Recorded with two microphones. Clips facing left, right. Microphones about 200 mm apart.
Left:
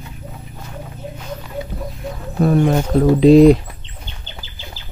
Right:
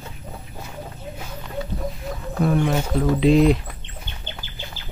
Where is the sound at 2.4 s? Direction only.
40° left (ahead or behind).